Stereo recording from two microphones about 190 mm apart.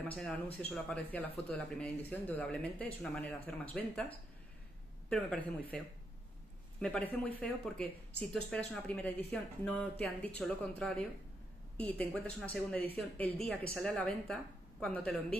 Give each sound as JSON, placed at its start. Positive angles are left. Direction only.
{"t": 0.1, "sound": "speech", "side_deg": 5}
{"t": 6.8, "sound": "speech", "side_deg": 10}